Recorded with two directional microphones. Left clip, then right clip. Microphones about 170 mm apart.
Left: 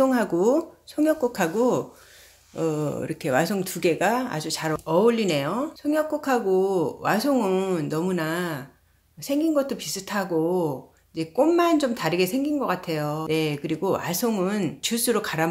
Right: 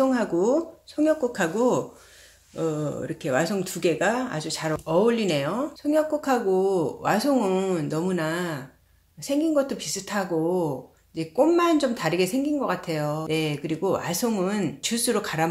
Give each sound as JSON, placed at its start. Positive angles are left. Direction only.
{"t": 0.0, "sound": "speech", "side_deg": 30}
{"t": 2.5, "sound": "speech", "side_deg": 25}